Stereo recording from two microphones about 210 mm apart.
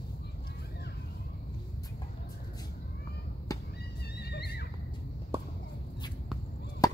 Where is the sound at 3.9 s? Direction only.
50° left (ahead or behind).